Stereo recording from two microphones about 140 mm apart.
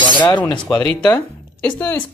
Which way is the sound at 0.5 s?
10° left (ahead or behind).